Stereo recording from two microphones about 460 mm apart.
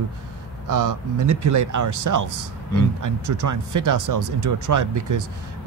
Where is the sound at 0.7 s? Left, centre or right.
Right.